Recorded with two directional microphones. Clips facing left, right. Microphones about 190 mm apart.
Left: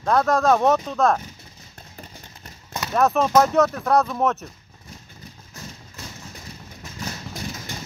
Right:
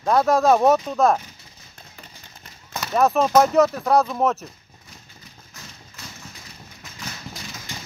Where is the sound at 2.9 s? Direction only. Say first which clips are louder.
Right 1 dB; 5° right (ahead or behind).